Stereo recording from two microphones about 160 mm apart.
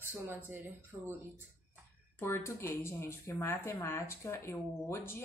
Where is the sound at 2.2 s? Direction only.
15° left (ahead or behind).